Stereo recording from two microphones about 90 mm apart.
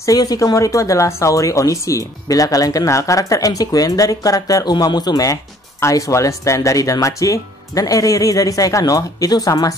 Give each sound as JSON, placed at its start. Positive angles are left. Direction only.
{"t": 0.0, "sound": "speech", "side_deg": 45}